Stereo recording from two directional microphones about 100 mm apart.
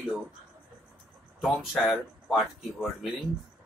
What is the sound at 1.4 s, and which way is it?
Speech, centre (ahead or behind).